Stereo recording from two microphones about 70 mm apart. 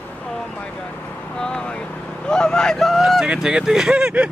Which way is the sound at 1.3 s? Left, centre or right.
Centre.